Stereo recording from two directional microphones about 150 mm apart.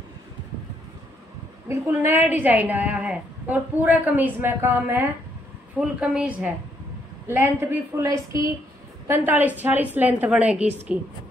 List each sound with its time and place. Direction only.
1.7 s a woman's voice: 15° right (ahead or behind)